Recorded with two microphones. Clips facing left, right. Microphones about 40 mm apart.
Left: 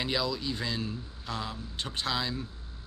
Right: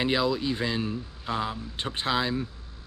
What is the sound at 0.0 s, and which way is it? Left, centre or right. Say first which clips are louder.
Speech: right 6 dB; right.